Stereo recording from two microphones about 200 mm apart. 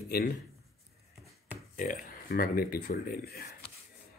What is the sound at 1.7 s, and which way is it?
A man's voice, 40° left (ahead or behind).